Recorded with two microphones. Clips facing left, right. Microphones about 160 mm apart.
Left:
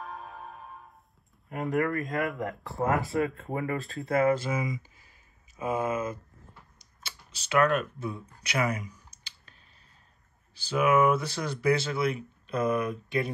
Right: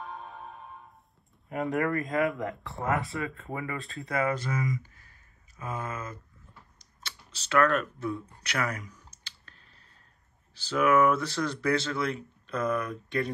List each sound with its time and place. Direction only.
0.0 s music: centre (ahead or behind)
1.6 s speech: centre (ahead or behind)
4.3 s speech: 25° left (ahead or behind)
5.6 s speech: 15° left (ahead or behind)
6.8 s computer keyboard: 10° left (ahead or behind)
10.5 s speech: 15° left (ahead or behind)